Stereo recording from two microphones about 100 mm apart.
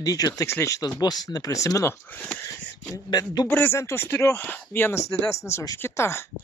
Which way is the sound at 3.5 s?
20° left (ahead or behind).